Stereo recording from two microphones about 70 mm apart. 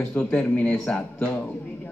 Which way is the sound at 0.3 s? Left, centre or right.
Left.